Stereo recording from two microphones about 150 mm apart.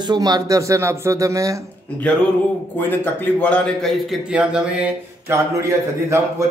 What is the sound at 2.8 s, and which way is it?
A man's voice, 15° left (ahead or behind).